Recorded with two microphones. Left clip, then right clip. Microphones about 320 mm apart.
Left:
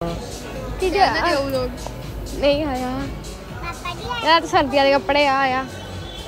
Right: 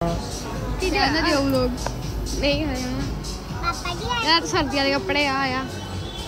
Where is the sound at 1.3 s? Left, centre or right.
Right.